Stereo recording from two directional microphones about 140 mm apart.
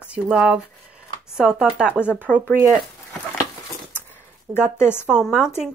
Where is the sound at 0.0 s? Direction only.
10° right (ahead or behind).